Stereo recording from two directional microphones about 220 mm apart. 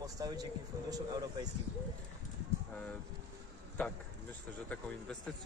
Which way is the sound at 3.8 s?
5° left (ahead or behind).